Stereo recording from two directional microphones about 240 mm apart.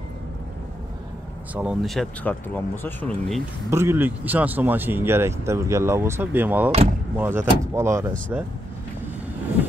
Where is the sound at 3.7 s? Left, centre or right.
Centre.